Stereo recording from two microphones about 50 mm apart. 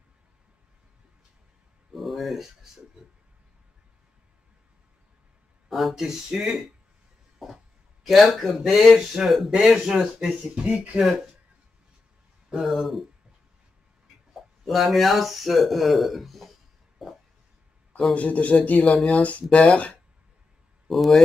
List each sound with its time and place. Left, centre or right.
1.9 s a sound: centre
5.7 s speech: centre
7.3 s a sound: centre
8.1 s speech: centre
10.7 s speech: right
11.0 s speech: centre
12.4 s speech: centre
14.3 s speech: centre
17.0 s a sound: centre
18.1 s speech: left
20.9 s speech: centre